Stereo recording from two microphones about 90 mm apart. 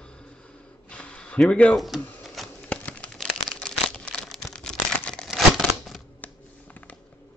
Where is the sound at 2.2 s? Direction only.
Centre (ahead or behind).